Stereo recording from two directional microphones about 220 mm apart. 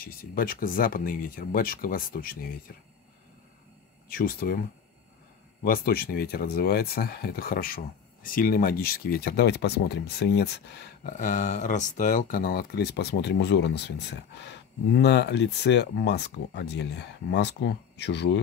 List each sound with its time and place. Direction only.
0.0 s speech: 40° left (ahead or behind)
4.2 s speech: 40° left (ahead or behind)
5.6 s speech: 40° left (ahead or behind)
11.1 s speech: 35° left (ahead or behind); by 18.4 s 50° left (ahead or behind)